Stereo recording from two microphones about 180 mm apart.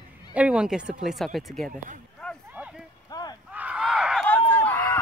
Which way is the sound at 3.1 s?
20° left (ahead or behind).